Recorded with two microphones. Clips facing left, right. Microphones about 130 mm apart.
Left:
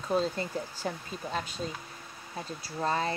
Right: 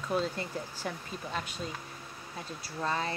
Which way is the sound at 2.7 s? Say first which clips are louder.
Left 3 dB; 35° left (ahead or behind).